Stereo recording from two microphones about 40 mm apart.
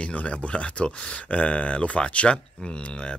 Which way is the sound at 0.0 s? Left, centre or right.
Left.